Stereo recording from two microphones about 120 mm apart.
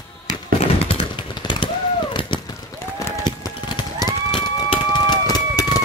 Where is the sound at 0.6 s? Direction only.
55° left (ahead or behind).